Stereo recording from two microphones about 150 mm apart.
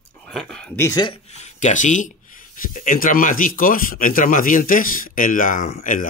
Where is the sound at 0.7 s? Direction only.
25° left (ahead or behind).